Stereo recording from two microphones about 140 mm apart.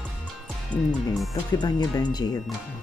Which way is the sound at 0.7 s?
10° right (ahead or behind).